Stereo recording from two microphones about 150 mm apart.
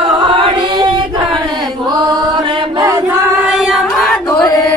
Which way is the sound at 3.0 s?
15° right (ahead or behind).